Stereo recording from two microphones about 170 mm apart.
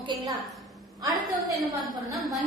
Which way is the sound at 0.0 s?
25° right (ahead or behind).